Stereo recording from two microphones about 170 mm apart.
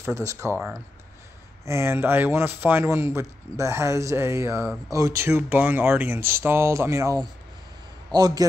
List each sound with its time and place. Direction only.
0.0 s a man's voice: 15° right (ahead or behind)